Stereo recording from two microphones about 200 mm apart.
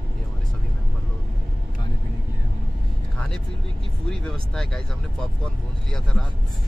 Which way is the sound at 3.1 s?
5° left (ahead or behind).